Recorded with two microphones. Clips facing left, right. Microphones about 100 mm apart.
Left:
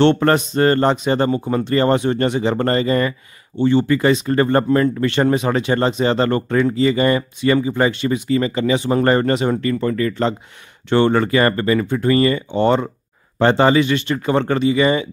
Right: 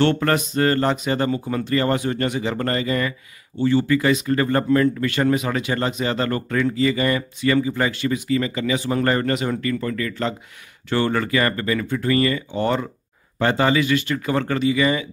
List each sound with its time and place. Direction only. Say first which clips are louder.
0.0 s speech: left 5 dB; 25° left (ahead or behind)
3.5 s speech: left 3 dB; 25° left (ahead or behind)